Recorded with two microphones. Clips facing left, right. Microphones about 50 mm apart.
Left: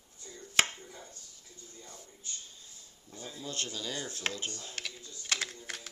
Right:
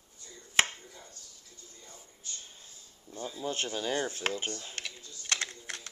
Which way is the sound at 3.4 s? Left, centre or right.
Right.